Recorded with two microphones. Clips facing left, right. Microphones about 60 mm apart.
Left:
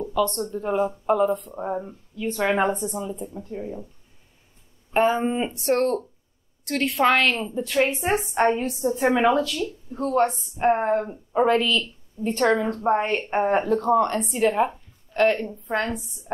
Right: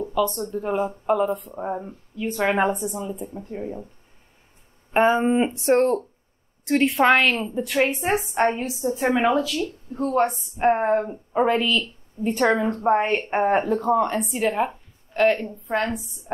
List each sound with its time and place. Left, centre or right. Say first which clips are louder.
0.0 s a sound: even; centre
0.6 s a woman's voice: left 1 dB; centre
2.7 s a woman's voice: even; centre
3.4 s speech: right 2 dB; right
4.9 s a woman's voice: right 3 dB; centre